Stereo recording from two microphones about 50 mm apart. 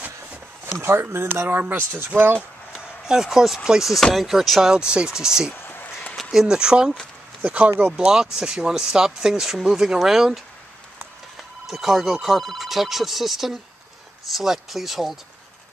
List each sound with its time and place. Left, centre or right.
0.7 s speech: right
1.5 s speech: right
1.8 s speech: right
2.0 s speech: right
2.7 s speech: centre
4.6 s speech: centre
5.5 s a sound: left
6.3 s speech: centre
7.4 s speech: right; by 10.4 s centre
11.6 s speech: centre